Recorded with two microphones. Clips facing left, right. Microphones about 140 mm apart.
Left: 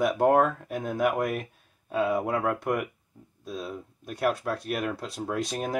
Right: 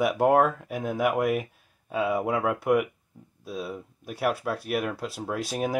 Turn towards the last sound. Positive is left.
turn(degrees=-5)  # may be behind; listen again after turning